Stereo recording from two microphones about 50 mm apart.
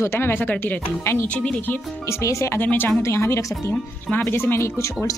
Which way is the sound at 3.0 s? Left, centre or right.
Left.